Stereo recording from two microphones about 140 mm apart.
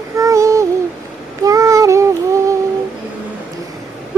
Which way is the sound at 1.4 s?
25° right (ahead or behind).